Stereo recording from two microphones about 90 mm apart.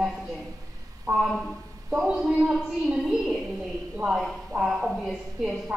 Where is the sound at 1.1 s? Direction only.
35° right (ahead or behind).